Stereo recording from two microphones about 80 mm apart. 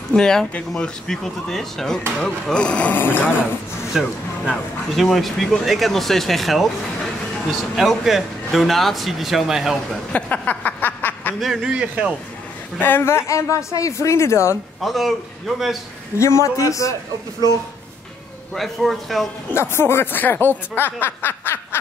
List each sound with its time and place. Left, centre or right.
0.1 s speech: centre; by 3.4 s left
3.9 s speech: centre
7.7 s speech: centre
10.1 s a sound: centre
11.3 s speech: centre
11.7 s a man's voice: centre
12.7 s speech: left
14.8 s speech: centre
16.2 s speech: left
18.5 s speech: centre
19.5 s speech: left